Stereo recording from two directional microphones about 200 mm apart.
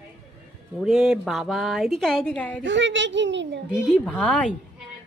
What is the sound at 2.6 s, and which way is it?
A child's voice, 65° right (ahead or behind).